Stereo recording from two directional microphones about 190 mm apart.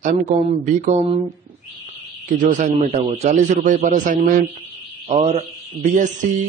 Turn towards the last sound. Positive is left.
turn(degrees=-40)  # may be behind; listen again after turning